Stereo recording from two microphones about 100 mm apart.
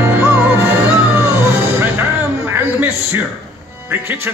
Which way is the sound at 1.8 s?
20° right (ahead or behind).